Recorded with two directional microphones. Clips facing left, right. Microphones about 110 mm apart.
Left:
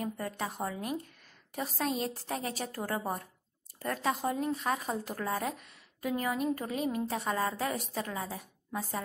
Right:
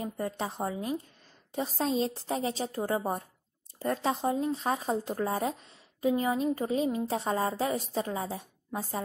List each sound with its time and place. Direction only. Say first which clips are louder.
0.0 s speech: right 2 dB; 25° right (ahead or behind)